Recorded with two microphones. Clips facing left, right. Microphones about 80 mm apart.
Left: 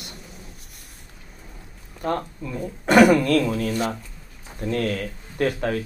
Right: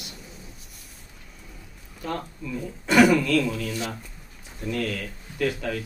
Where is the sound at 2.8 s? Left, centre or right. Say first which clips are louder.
Left 3 dB; left.